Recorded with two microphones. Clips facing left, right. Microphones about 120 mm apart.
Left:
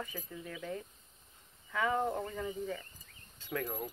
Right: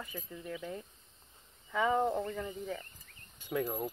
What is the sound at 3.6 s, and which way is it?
Speech, 25° right (ahead or behind).